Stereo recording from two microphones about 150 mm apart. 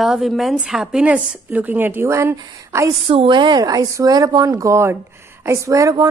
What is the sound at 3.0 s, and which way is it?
Speech, 35° right (ahead or behind).